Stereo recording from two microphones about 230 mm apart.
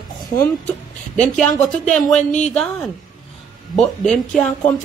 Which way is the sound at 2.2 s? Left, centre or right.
Left.